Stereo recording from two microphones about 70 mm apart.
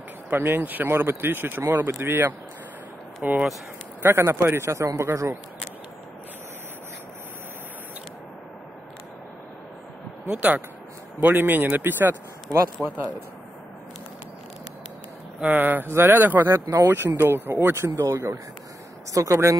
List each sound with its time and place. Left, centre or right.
0.3 s speech: right
1.9 s speech: right
3.2 s speech: right
4.2 s a man's voice: right
10.2 s speech: right
15.4 s speech: right
16.5 s a man's voice: right
16.8 s a man's voice: right